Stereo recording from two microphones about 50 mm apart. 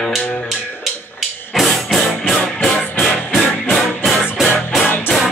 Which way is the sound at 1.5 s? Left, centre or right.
Centre.